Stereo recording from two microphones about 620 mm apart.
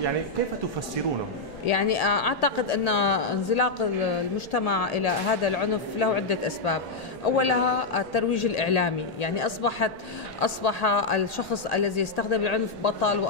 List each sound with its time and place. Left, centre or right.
1.7 s a woman's voice: left